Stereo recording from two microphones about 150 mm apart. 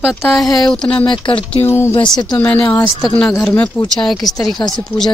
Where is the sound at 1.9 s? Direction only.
30° left (ahead or behind).